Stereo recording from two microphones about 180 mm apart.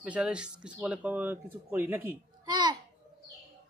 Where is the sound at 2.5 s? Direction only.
25° right (ahead or behind).